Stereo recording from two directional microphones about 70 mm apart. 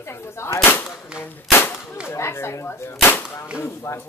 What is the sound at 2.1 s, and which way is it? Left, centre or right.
Speech, left.